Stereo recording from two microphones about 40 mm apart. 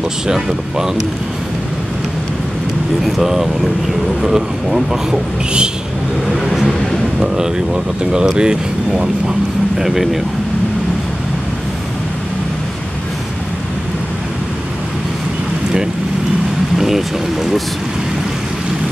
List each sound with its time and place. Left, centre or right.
3.0 s speech: centre
6.3 s vehicle: centre
7.2 s speech: centre
9.8 s speech: centre
16.7 s boat: centre